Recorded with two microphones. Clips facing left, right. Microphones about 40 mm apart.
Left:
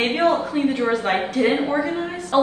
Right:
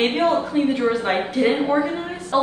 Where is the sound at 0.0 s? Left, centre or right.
Left.